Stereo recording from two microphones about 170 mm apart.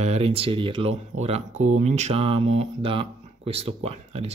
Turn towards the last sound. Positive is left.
turn(degrees=-35)  # may be behind; listen again after turning